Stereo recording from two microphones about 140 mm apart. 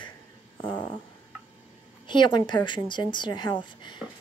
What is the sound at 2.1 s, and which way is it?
A woman's voice, 35° left (ahead or behind).